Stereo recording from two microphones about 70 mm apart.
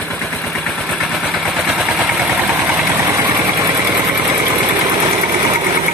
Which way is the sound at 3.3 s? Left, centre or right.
Right.